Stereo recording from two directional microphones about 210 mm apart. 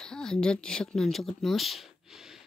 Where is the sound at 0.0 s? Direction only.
5° left (ahead or behind).